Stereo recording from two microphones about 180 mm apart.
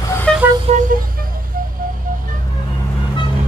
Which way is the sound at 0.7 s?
35° right (ahead or behind).